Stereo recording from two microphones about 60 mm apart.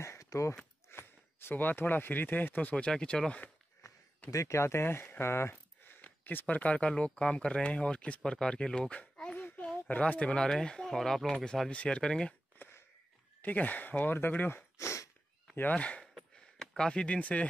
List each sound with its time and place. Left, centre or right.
0.0 s speech: left
0.8 s speech: left
2.7 s speech: centre
4.3 s speech: left; by 12.4 s centre
12.6 s a sound: left
13.4 s speech: left
14.8 s a sound: left
15.7 s speech: left
16.0 s a sound: centre